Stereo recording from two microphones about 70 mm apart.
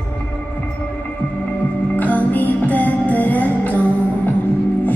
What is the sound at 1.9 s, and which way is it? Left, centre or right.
Music, left.